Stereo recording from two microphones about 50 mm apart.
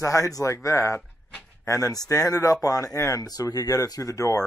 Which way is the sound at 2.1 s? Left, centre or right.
Left.